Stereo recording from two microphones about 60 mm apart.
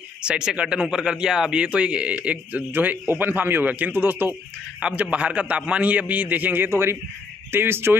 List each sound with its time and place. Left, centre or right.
0.2 s a man's voice: centre; by 4.4 s right
4.9 s a man's voice: right
6.7 s a man's voice: right